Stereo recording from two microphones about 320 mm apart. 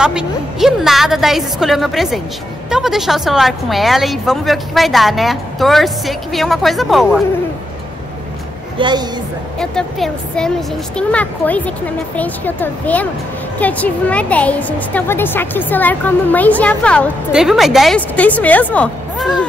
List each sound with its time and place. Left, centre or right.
0.0 s a woman's voice: centre
8.7 s a woman's voice: centre
9.6 s a woman's voice: centre